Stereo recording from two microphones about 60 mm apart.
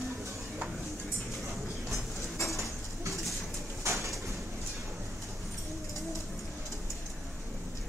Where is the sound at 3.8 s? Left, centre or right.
Right.